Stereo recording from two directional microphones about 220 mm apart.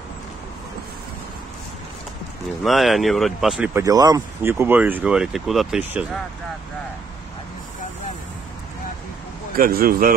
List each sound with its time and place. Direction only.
2.6 s speech: centre (ahead or behind)
3.8 s speech: 15° right (ahead or behind)
9.6 s speech: 40° right (ahead or behind)